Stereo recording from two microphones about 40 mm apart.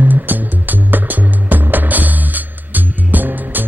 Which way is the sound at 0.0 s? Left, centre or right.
Right.